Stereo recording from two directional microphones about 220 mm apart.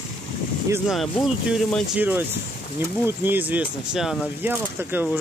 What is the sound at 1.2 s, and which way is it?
Speech, centre (ahead or behind).